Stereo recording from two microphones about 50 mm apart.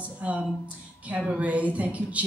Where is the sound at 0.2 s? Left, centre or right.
Right.